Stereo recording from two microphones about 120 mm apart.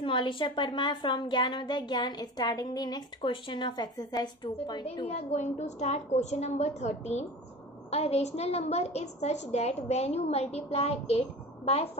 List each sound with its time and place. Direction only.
0.0 s a woman's voice: 45° left (ahead or behind)
3.2 s a woman's voice: 45° left (ahead or behind)
5.0 s a woman's voice: 70° left (ahead or behind)